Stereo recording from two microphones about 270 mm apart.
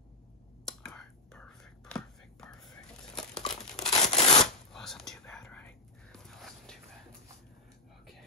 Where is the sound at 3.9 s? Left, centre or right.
Left.